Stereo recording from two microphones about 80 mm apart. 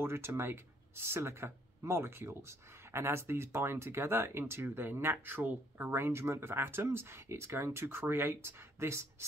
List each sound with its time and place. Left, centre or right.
0.0 s speech: right